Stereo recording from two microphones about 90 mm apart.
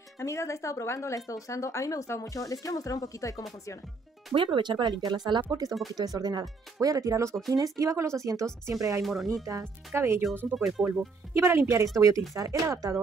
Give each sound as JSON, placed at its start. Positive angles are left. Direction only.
{"t": 0.2, "sound": "speech", "side_deg": 35}
{"t": 4.3, "sound": "speech", "side_deg": -60}
{"t": 9.0, "sound": "speech", "side_deg": 0}
{"t": 9.3, "sound": "speech", "side_deg": -40}
{"t": 10.5, "sound": "speech", "side_deg": -5}
{"t": 11.3, "sound": "speech", "side_deg": -30}